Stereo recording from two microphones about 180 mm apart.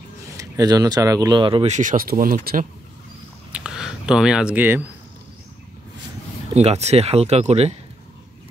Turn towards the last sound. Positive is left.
turn(degrees=-35)  # may be behind; listen again after turning